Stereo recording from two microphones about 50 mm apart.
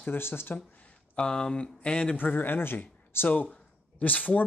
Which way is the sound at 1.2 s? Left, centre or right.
Centre.